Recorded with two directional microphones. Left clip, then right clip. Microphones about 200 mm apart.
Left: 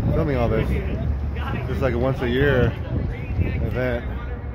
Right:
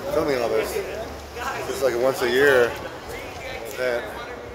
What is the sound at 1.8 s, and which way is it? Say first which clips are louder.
Speech: right 2 dB; 10° right (ahead or behind).